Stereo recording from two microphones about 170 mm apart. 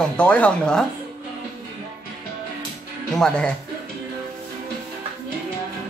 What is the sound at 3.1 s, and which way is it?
Speech, 5° left (ahead or behind).